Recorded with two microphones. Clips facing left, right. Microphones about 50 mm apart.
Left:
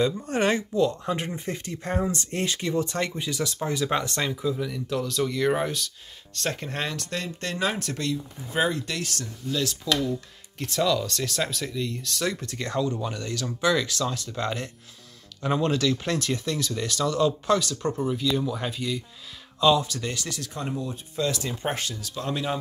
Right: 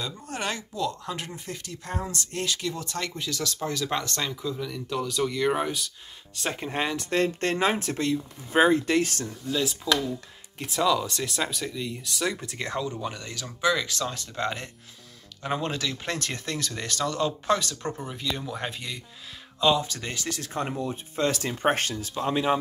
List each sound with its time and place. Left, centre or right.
0.0 s speech: left; by 7.1 s centre
7.1 s speech: right
9.5 s speech: centre
12.5 s speech: centre
16.2 s speech: right
22.1 s speech: right